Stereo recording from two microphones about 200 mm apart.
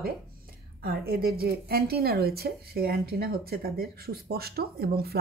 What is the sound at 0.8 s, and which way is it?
Speech, 50° right (ahead or behind).